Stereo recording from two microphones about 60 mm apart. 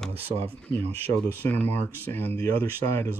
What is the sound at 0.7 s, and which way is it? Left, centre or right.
Speech, left.